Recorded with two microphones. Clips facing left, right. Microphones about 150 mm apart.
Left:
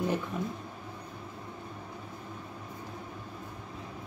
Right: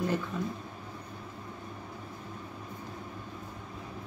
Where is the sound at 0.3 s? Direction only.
20° left (ahead or behind).